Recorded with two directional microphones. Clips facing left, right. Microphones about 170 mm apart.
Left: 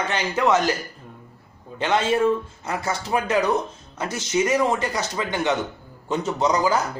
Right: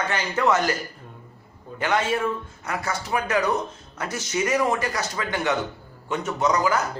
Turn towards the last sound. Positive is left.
turn(degrees=25)  # may be behind; listen again after turning